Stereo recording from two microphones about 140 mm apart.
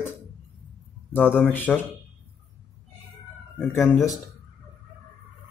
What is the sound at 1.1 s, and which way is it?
Speech, 10° left (ahead or behind).